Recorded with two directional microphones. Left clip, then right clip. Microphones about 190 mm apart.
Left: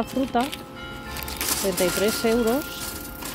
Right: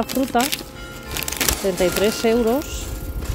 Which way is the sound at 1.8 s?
15° right (ahead or behind).